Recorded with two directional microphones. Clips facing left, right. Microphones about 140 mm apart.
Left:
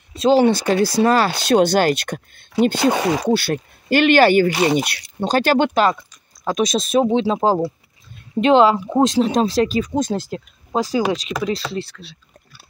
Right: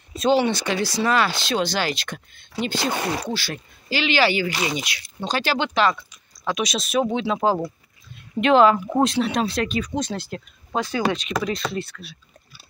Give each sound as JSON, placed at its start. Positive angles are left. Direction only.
{"t": 0.1, "sound": "a sound", "side_deg": 30}
{"t": 0.4, "sound": "speech", "side_deg": 45}
{"t": 1.6, "sound": "speech", "side_deg": 50}
{"t": 3.0, "sound": "speech", "side_deg": 80}
{"t": 3.3, "sound": "speech", "side_deg": 50}
{"t": 7.1, "sound": "speech", "side_deg": 30}
{"t": 10.3, "sound": "speech", "side_deg": 35}
{"t": 11.2, "sound": "speech", "side_deg": 0}
{"t": 11.7, "sound": "speech", "side_deg": 30}